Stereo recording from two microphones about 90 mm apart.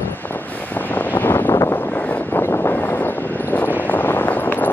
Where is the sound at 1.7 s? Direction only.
20° left (ahead or behind).